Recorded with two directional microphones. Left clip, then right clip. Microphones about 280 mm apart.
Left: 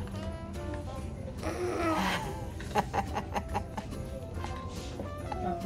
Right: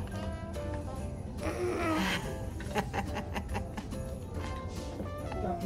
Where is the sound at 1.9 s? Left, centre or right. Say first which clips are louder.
Left 1 dB; centre.